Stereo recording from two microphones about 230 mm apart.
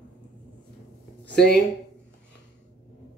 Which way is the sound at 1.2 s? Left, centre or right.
Left.